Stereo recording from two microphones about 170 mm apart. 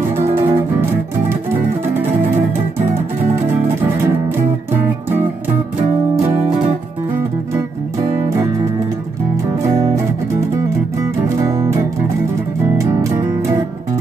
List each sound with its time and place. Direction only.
0.1 s guitar: 15° right (ahead or behind)
1.3 s music: 10° right (ahead or behind)
6.1 s music: 40° right (ahead or behind)
9.6 s music: 20° right (ahead or behind)